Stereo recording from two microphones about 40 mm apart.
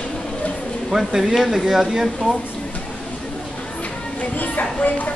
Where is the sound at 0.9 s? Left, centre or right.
Centre.